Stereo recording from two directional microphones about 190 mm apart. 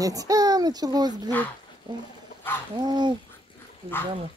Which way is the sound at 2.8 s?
20° right (ahead or behind).